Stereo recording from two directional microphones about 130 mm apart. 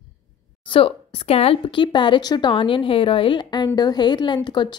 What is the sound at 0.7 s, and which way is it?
A woman's voice, 45° left (ahead or behind).